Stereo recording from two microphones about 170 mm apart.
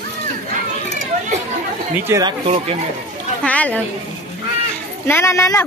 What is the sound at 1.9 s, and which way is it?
Speech, 15° right (ahead or behind).